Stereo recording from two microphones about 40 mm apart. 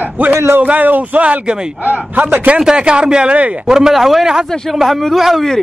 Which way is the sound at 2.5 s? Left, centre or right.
Right.